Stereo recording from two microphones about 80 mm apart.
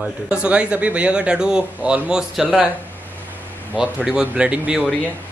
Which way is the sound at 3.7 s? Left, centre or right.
Centre.